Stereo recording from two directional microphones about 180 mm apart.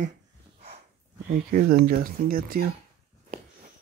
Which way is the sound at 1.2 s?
55° right (ahead or behind).